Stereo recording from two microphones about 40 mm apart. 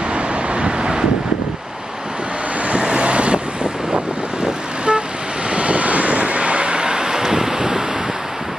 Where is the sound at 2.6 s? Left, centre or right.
Right.